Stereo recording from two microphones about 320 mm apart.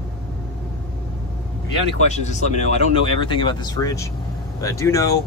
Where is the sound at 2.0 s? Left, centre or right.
Left.